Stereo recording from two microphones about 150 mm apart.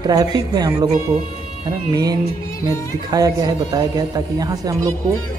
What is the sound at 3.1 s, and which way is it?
Speech, 25° right (ahead or behind).